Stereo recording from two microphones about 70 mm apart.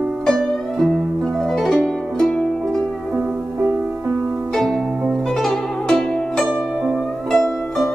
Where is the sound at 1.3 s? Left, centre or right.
Centre.